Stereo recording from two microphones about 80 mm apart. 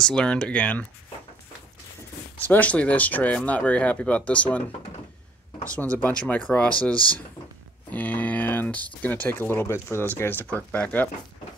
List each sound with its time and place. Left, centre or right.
0.0 s speech: centre
2.4 s speech: centre
7.9 s speech: left